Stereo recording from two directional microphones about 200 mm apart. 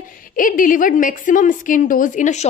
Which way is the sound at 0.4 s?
45° left (ahead or behind).